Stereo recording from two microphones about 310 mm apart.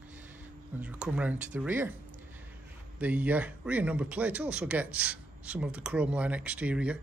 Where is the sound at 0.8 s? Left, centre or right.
Centre.